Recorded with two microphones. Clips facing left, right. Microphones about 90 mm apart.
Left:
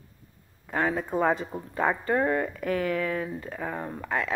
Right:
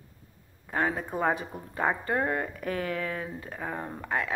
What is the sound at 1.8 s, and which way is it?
Speech, 15° right (ahead or behind).